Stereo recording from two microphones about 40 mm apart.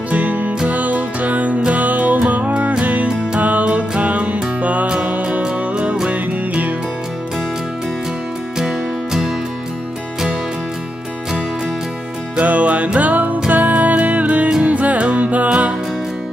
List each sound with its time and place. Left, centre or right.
0.1 s music: right
5.2 s music: right
8.5 s music: centre
12.4 s music: right